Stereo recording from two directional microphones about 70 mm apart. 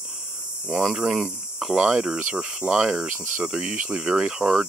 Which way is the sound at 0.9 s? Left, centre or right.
Centre.